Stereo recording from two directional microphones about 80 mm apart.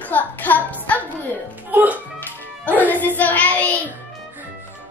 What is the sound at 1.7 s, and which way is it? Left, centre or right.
Speech, centre.